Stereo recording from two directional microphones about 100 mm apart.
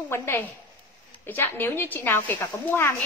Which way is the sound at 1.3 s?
20° left (ahead or behind).